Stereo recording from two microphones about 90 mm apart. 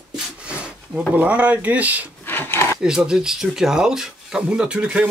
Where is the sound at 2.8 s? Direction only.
10° right (ahead or behind).